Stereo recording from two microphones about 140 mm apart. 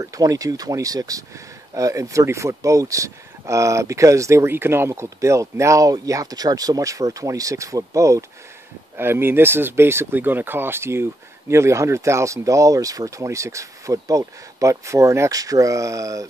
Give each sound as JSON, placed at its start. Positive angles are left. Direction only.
{"t": 0.0, "sound": "speech", "side_deg": -25}